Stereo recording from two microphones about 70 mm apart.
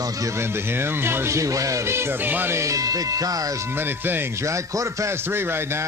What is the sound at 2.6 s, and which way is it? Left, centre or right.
Speech, right.